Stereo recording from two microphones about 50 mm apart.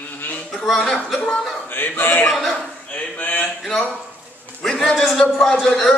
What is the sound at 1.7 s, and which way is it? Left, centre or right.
Speech, left.